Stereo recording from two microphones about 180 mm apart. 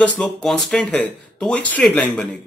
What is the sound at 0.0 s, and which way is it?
Speech, 5° left (ahead or behind).